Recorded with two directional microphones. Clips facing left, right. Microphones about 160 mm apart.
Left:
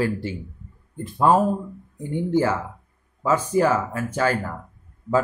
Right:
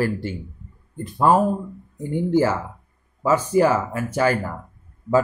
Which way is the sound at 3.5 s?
10° right (ahead or behind).